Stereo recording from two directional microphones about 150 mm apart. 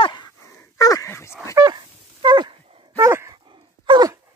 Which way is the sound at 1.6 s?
30° right (ahead or behind).